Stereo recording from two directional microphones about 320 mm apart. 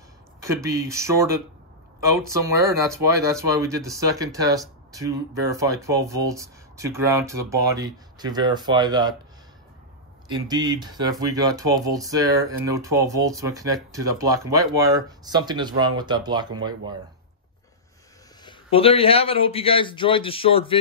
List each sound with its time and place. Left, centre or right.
0.4 s speech: centre
10.2 s speech: centre
18.4 s a man's voice: centre